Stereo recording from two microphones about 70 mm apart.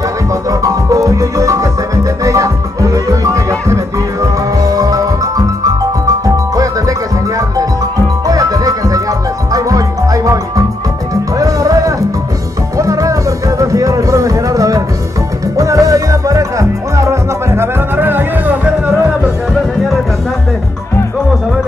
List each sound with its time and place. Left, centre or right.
0.5 s music: right
17.9 s music: right